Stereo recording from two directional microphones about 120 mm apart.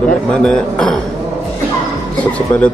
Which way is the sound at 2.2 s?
10° left (ahead or behind).